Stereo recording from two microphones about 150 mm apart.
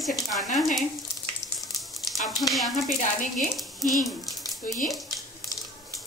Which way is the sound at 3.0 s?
55° left (ahead or behind).